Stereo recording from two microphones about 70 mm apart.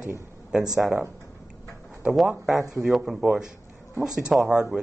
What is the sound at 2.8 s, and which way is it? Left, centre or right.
Speech, centre.